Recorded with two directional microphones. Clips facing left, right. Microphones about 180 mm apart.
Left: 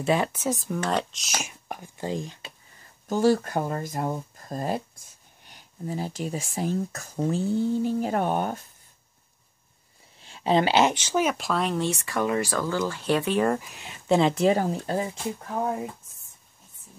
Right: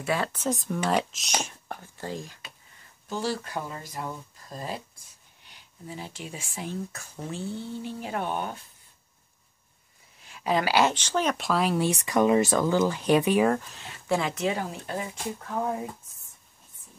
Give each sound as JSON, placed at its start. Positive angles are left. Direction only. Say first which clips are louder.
{"t": 0.0, "sound": "speech", "louder": "left 4 dB", "side_deg": 20}
{"t": 0.3, "sound": "speech", "louder": "left 1 dB", "side_deg": 5}
{"t": 1.4, "sound": "speech", "louder": "even", "side_deg": 15}
{"t": 3.1, "sound": "speech", "louder": "left 9 dB", "side_deg": 50}
{"t": 10.2, "sound": "speech", "louder": "left 4 dB", "side_deg": 30}
{"t": 11.0, "sound": "speech", "louder": "left 2 dB", "side_deg": 10}
{"t": 12.0, "sound": "speech", "louder": "right 4 dB", "side_deg": -20}
{"t": 13.5, "sound": "speech", "louder": "even", "side_deg": 10}
{"t": 15.4, "sound": "speech", "louder": "left 1 dB", "side_deg": 15}